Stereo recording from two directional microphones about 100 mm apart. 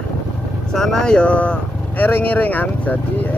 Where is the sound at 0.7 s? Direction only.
5° left (ahead or behind).